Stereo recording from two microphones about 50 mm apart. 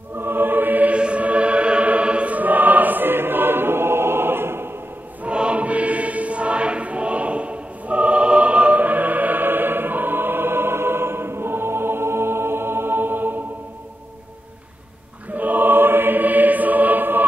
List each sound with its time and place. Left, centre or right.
0.2 s music: right
0.9 s music: right
5.2 s choir: right
15.3 s music: right